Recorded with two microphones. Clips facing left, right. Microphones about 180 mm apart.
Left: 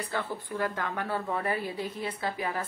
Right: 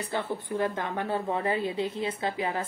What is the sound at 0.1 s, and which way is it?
A woman's voice, 25° right (ahead or behind).